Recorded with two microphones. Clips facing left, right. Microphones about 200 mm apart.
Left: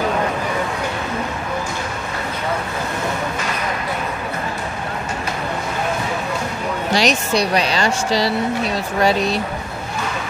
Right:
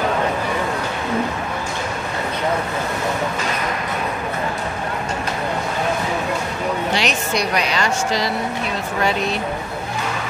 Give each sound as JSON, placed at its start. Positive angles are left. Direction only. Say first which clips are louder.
{"t": 6.9, "sound": "speech", "louder": "left 3 dB", "side_deg": 35}